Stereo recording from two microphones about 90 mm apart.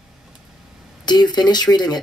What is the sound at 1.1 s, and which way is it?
Speech, 50° left (ahead or behind).